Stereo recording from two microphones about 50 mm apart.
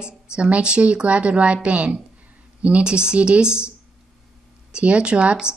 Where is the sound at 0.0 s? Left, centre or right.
Right.